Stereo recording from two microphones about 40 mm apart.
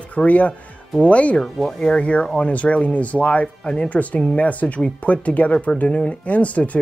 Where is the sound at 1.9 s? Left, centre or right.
Left.